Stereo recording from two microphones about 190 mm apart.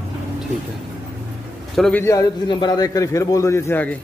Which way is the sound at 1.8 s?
10° left (ahead or behind).